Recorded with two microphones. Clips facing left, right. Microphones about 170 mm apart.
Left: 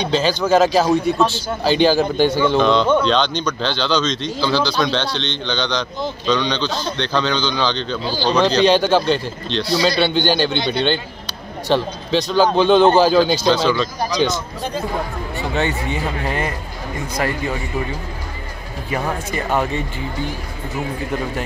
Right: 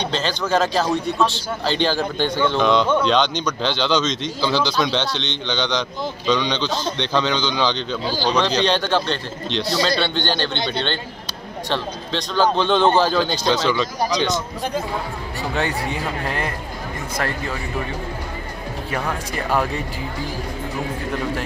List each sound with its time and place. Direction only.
0.0 s a man's voice: 5° left (ahead or behind)
2.6 s a man's voice: 10° right (ahead or behind)
6.2 s speech: 5° right (ahead or behind)
6.5 s a man's voice: 20° right (ahead or behind)
8.3 s speech: 5° left (ahead or behind)
9.5 s speech: 20° right (ahead or behind)
9.8 s a man's voice: 10° left (ahead or behind)
13.7 s a man's voice: 15° right (ahead or behind)
15.5 s a man's voice: centre (ahead or behind)
19.3 s speech: centre (ahead or behind)